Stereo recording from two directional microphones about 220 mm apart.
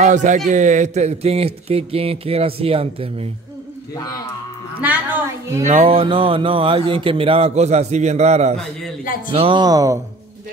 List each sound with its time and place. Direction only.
0.0 s speech: 35° right (ahead or behind)
4.8 s a woman's voice: 10° right (ahead or behind)
5.6 s speech: 35° right (ahead or behind); by 9.9 s 15° right (ahead or behind)